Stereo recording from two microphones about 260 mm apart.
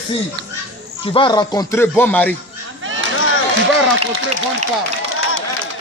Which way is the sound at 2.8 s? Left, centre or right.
Right.